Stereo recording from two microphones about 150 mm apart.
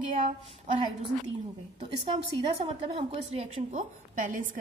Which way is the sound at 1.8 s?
40° right (ahead or behind).